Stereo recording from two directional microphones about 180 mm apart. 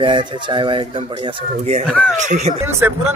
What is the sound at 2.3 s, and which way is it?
Speech, 40° right (ahead or behind).